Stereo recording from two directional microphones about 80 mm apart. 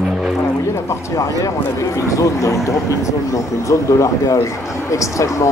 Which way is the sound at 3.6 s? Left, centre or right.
Left.